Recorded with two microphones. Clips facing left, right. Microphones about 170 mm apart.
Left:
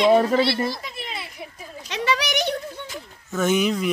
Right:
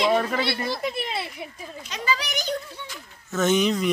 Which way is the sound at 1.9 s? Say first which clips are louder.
Left 5 dB; 80° left.